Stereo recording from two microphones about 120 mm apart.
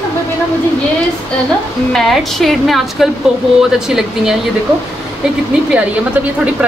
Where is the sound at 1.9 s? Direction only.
5° left (ahead or behind).